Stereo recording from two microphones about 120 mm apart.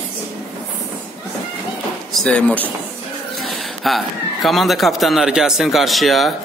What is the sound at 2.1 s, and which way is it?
Speech, 10° left (ahead or behind).